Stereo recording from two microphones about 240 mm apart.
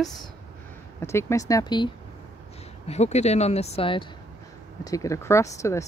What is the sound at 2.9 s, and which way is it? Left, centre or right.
Speech, left.